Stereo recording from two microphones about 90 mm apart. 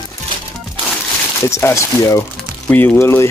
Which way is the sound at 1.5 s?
30° left (ahead or behind).